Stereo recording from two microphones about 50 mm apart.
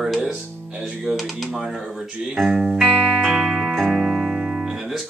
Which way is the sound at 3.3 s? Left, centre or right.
Centre.